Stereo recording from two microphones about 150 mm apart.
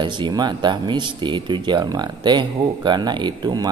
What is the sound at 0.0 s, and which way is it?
A man's voice, 30° right (ahead or behind).